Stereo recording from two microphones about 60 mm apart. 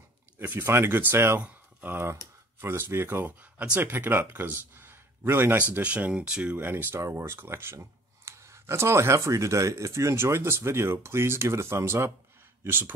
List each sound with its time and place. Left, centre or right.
0.4 s speech: right
1.4 s a sound: right
2.6 s speech: right
5.6 s speech: right
6.5 s speech: right
7.0 s speech: right
7.3 s speech: right
12.6 s speech: right